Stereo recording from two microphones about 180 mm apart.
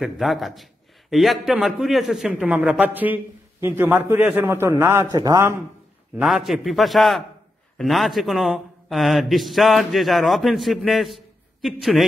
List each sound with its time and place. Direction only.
0.0 s a man's voice: centre (ahead or behind); by 5.6 s 15° right (ahead or behind)
6.1 s a man's voice: centre (ahead or behind)